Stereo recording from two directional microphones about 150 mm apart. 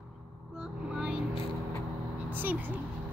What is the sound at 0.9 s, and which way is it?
Vehicle, 5° right (ahead or behind).